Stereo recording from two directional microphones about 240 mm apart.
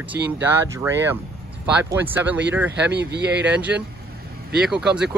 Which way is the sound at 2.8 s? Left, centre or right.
Right.